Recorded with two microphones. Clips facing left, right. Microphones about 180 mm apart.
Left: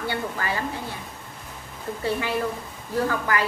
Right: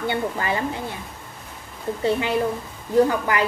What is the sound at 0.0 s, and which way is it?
Speech, 20° right (ahead or behind).